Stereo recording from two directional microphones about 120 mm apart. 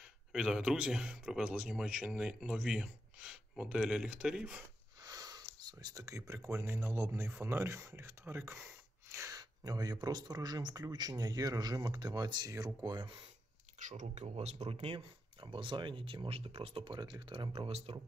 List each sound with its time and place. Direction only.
0.3 s speech: 5° right (ahead or behind)
5.0 s speech: 30° right (ahead or behind)
13.7 s speech: 90° right
14.2 s speech: 60° right (ahead or behind)
15.4 s speech: 45° right (ahead or behind)
17.6 s speech: 55° right (ahead or behind)